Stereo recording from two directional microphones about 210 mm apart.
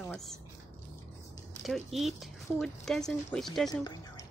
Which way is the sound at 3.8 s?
20° left (ahead or behind).